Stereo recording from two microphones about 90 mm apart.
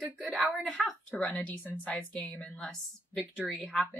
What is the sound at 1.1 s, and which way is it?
Speech, 15° left (ahead or behind).